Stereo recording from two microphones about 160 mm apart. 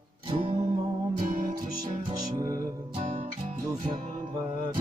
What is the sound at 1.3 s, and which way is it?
Music, 60° right (ahead or behind).